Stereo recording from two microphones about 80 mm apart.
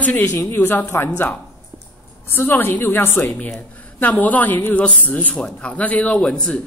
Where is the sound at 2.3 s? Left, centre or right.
Left; by 6.6 s centre.